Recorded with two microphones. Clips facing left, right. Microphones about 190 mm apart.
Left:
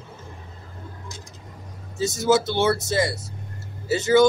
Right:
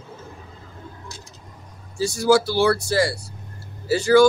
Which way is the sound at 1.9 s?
20° left (ahead or behind).